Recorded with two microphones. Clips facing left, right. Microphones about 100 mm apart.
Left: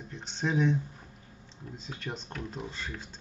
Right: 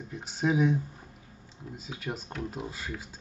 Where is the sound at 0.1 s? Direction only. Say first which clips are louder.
Right 3 dB; 5° right (ahead or behind).